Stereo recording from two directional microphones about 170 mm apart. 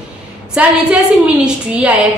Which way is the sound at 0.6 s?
5° right (ahead or behind).